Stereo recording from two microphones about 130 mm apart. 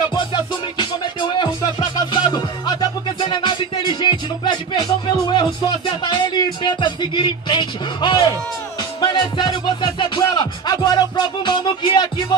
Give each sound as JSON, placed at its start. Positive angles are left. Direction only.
{"t": 0.1, "sound": "music", "side_deg": 35}